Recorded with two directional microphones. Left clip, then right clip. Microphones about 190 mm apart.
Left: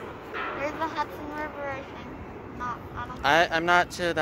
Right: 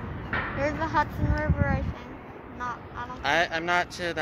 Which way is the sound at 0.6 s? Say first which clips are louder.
Right 4 dB; 40° right (ahead or behind).